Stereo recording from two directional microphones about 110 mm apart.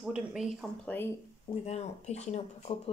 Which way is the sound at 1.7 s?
85° left.